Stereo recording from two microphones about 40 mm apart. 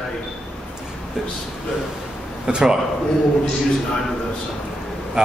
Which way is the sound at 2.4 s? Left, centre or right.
Centre.